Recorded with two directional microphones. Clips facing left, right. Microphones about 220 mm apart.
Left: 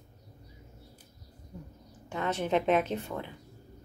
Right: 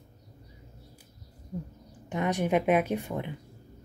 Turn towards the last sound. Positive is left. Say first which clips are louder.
# right 3 dB
turn(degrees=-15)  # may be behind; listen again after turning